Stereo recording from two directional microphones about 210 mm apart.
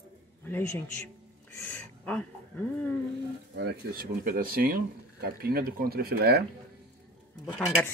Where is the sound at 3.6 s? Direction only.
50° right (ahead or behind).